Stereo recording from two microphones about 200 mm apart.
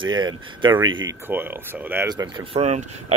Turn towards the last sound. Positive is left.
turn(degrees=-35)  # may be behind; listen again after turning